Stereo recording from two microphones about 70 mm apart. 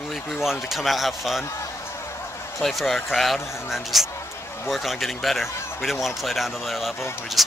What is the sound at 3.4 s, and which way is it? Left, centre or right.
Speech, left.